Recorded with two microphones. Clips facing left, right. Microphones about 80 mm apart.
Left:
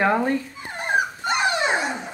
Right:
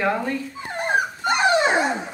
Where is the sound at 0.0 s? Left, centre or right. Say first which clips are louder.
Left 3 dB; left.